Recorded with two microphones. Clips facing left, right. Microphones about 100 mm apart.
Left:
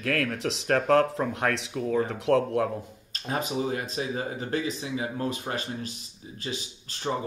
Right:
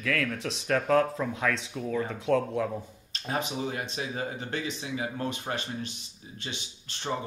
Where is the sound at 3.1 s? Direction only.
40° left (ahead or behind).